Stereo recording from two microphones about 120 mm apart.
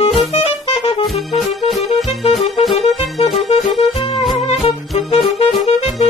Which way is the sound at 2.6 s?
55° left (ahead or behind).